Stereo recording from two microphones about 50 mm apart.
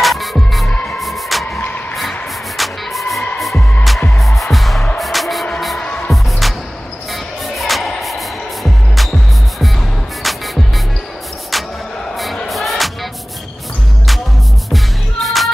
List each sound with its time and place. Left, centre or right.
0.0 s music: centre
1.6 s vehicle: left
2.0 s music: centre
5.8 s music: left
6.4 s music: centre
14.7 s music: centre